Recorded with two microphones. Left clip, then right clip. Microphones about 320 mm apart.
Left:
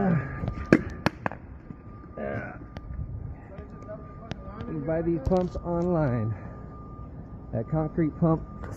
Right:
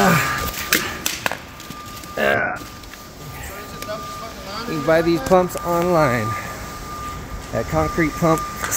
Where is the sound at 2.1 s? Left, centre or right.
Right.